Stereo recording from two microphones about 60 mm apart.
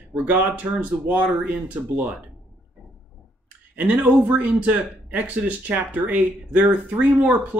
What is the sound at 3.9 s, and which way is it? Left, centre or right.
Speech, centre.